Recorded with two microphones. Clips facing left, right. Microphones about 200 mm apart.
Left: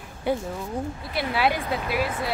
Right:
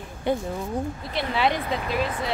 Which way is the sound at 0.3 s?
10° left (ahead or behind).